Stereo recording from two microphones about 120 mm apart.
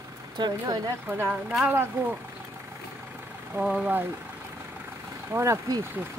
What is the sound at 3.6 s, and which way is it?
Speech, 5° right (ahead or behind).